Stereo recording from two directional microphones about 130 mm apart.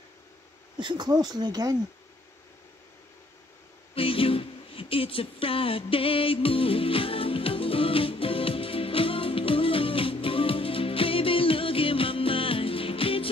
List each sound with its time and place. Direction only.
0.7 s speech: 35° right (ahead or behind)
3.9 s music: 45° left (ahead or behind)